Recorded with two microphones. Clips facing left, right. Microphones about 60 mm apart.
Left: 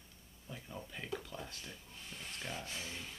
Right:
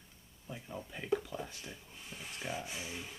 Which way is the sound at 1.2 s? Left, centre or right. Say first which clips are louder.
Right 4 dB; centre.